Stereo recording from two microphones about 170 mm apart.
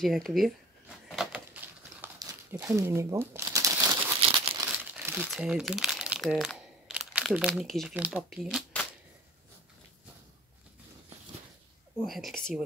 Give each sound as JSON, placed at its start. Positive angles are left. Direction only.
{"t": 0.0, "sound": "speech", "side_deg": 0}
{"t": 1.0, "sound": "a sound", "side_deg": 0}
{"t": 2.1, "sound": "crumpling", "side_deg": -20}
{"t": 3.9, "sound": "crumpling", "side_deg": -30}
{"t": 4.6, "sound": "crumpling", "side_deg": -10}
{"t": 7.9, "sound": "speech", "side_deg": -5}
{"t": 12.0, "sound": "speech", "side_deg": 0}